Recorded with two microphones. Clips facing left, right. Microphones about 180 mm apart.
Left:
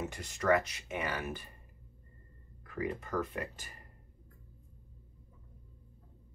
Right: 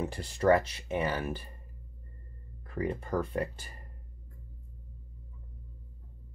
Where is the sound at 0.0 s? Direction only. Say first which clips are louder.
Right 6 dB; 30° right (ahead or behind).